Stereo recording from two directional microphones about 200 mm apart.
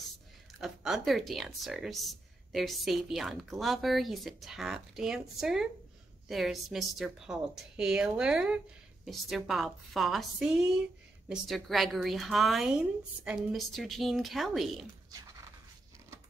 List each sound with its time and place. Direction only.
0.6 s speech: centre (ahead or behind)